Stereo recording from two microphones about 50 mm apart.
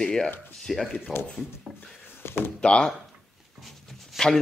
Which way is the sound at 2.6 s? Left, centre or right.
Centre.